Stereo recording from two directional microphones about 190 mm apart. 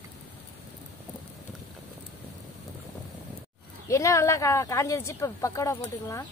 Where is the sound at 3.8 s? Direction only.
15° left (ahead or behind).